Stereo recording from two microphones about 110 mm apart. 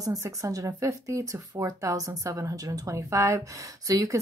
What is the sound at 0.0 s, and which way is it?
A woman's voice, 30° right (ahead or behind).